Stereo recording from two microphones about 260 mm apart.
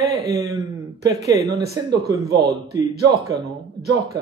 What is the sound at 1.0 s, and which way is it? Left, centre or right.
A man's voice, centre.